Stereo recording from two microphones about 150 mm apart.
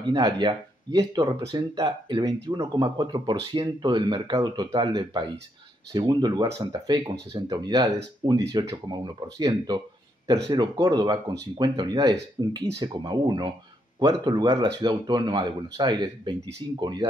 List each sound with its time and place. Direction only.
0.1 s speech: 30° right (ahead or behind)